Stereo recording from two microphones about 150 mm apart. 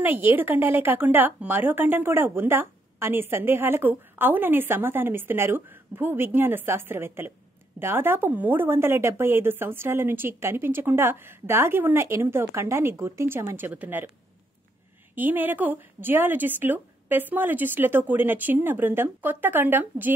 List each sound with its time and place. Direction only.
0.0 s a woman's voice: 15° right (ahead or behind)
15.1 s a woman's voice: 10° right (ahead or behind)